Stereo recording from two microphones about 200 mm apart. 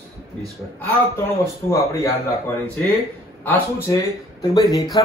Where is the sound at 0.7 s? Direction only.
15° left (ahead or behind).